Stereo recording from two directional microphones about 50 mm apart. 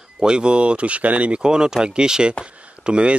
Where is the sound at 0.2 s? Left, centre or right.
Centre.